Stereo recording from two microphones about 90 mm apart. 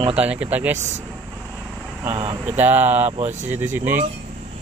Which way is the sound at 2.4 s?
20° right (ahead or behind).